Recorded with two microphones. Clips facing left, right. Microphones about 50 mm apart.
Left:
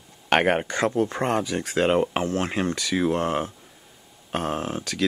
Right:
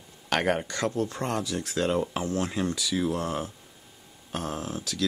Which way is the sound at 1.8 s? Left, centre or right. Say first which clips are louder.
Left 6 dB; left.